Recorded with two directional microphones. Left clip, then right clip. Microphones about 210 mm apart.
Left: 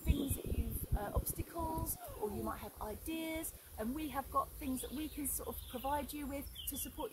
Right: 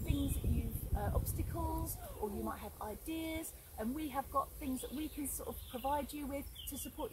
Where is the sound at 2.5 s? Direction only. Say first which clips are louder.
Even; 20° left (ahead or behind).